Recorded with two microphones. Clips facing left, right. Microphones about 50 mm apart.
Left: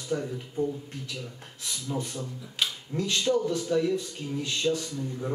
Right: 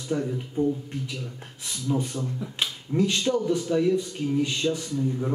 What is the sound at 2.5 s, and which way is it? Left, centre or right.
Speech, centre.